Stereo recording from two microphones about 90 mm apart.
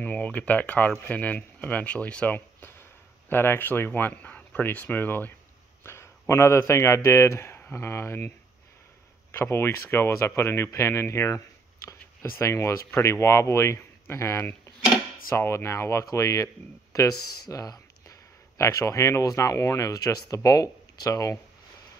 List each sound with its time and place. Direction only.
0.0 s a man's voice: 15° left (ahead or behind)
9.3 s speech: 30° left (ahead or behind)